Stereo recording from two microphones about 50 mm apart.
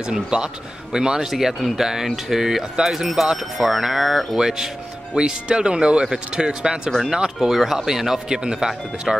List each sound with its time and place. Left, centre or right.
0.0 s speech: centre